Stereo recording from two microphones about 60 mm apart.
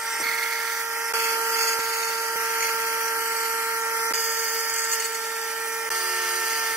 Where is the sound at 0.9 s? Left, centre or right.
Right.